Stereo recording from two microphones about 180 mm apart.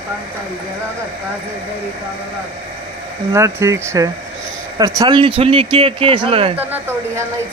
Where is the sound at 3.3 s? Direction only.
15° right (ahead or behind); by 6.6 s 30° right (ahead or behind).